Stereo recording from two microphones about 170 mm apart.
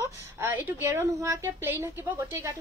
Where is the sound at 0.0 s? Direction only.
15° right (ahead or behind).